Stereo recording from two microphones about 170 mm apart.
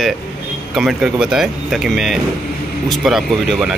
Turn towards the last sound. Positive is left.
turn(degrees=0)  # may be behind; listen again after turning